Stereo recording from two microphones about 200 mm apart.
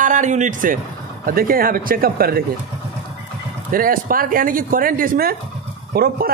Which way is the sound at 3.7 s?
45° right (ahead or behind).